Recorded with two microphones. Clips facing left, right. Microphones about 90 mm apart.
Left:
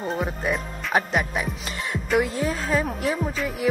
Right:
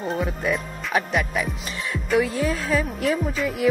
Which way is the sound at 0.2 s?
30° left (ahead or behind).